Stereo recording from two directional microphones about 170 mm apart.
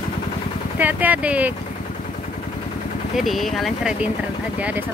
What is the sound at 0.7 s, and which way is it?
Speech, 10° right (ahead or behind).